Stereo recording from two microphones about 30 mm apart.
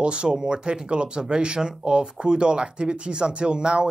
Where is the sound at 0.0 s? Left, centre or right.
Right.